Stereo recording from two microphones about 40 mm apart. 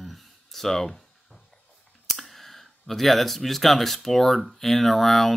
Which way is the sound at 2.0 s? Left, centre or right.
Centre.